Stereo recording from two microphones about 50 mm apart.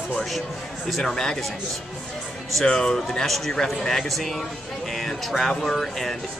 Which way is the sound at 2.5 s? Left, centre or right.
Centre.